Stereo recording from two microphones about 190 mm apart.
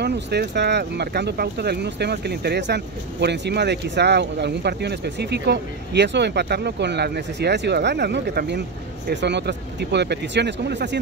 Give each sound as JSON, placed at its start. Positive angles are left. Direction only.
{"t": 0.0, "sound": "speech", "side_deg": -60}